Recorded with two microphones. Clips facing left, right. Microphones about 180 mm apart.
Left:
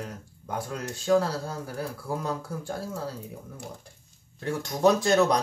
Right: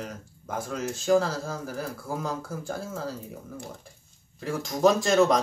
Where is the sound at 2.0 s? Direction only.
Centre (ahead or behind).